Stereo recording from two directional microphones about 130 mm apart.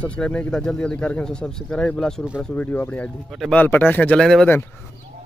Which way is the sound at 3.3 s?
Centre (ahead or behind).